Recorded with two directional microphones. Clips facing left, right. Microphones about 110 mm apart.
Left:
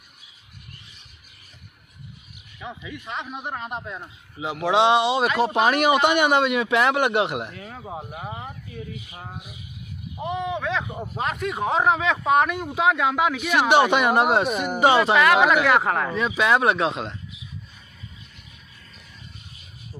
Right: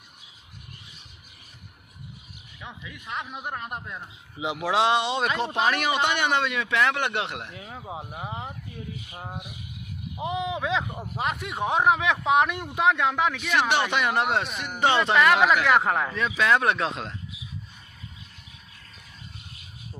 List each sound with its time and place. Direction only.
2.6 s speech: centre (ahead or behind)
4.4 s speech: 15° right (ahead or behind)
4.6 s speech: centre (ahead or behind)
5.4 s speech: 15° left (ahead or behind)
7.5 s speech: 15° right (ahead or behind)
7.8 s speech: 5° right (ahead or behind)
9.1 s speech: 20° right (ahead or behind)
11.2 s speech: centre (ahead or behind)